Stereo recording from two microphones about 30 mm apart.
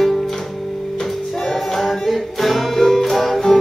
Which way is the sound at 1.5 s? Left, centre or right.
Centre.